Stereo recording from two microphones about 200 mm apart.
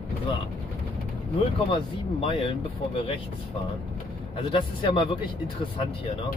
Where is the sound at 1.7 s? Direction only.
25° left (ahead or behind).